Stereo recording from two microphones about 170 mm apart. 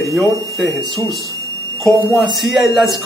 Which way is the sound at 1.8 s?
Centre (ahead or behind).